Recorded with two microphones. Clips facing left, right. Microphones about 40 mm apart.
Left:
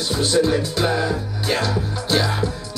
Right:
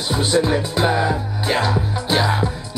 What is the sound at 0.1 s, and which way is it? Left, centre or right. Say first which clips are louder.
Music: right 1 dB; centre.